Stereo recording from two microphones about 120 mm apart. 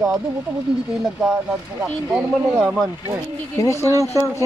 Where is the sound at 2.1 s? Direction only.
10° right (ahead or behind).